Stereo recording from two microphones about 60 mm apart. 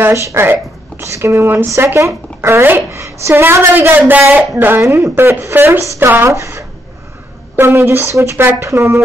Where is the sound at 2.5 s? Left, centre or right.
Right.